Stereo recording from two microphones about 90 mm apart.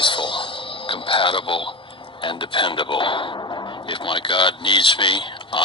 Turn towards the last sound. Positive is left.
turn(degrees=65)  # may be behind; listen again after turning